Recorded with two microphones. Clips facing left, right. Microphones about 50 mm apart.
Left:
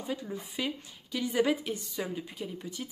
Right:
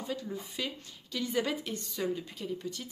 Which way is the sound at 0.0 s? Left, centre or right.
Centre.